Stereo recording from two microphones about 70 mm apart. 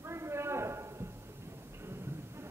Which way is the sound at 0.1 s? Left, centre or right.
Right.